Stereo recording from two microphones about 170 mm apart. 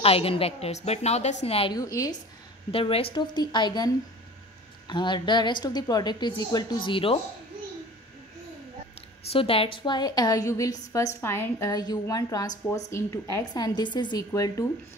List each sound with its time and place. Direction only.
0.0 s a woman's voice: 35° left (ahead or behind)
1.7 s a woman's voice: 20° left (ahead or behind)
2.7 s a woman's voice: 35° left (ahead or behind)
9.3 s a woman's voice: 35° left (ahead or behind)